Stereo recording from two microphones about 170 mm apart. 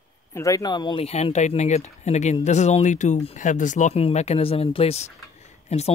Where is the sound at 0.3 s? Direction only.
20° left (ahead or behind).